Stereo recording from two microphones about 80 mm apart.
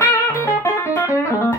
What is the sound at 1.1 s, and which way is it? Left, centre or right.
Music, left.